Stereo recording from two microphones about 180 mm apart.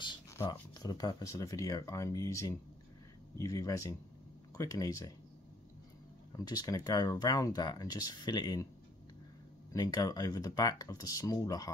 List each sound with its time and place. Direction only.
0.0 s speech: 25° left (ahead or behind)
6.3 s speech: 20° left (ahead or behind)
9.7 s speech: 20° left (ahead or behind)